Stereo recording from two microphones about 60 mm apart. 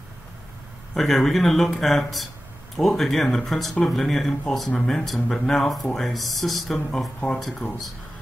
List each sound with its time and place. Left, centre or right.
0.9 s speech: centre